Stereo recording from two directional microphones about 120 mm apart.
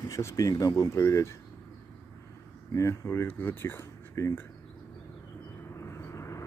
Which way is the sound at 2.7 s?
25° left (ahead or behind).